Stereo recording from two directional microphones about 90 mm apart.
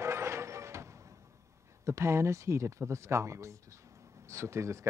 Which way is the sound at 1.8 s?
30° right (ahead or behind).